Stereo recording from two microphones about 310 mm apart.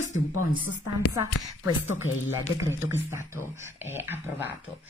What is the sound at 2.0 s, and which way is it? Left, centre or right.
Speech, left.